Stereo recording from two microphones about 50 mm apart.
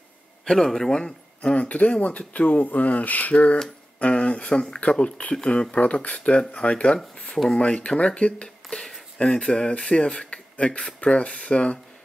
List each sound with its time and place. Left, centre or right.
0.5 s speech: centre; by 3.3 s left
3.3 s speech: centre
8.6 s speech: centre